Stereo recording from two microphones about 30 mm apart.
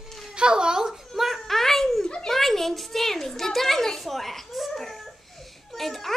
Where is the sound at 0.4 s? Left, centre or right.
Right.